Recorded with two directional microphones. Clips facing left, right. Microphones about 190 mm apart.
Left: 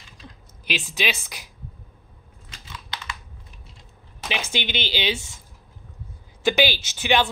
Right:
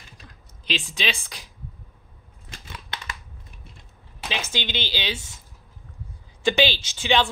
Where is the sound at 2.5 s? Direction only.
55° right (ahead or behind).